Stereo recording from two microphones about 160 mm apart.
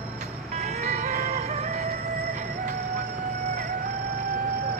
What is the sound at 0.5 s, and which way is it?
Music, 45° right (ahead or behind).